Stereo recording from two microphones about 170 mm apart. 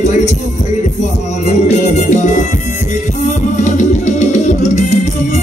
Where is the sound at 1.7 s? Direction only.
45° left (ahead or behind).